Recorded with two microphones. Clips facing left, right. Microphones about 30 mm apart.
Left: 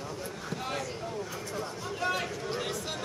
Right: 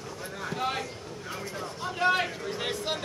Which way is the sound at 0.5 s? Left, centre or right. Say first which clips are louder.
Right 5 dB; right.